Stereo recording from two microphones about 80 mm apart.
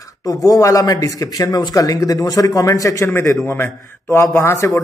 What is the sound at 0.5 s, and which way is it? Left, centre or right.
A man's voice, left.